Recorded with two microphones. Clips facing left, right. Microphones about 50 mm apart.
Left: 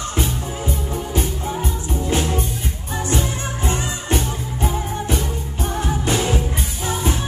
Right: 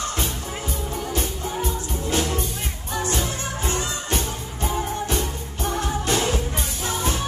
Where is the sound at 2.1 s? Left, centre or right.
Centre.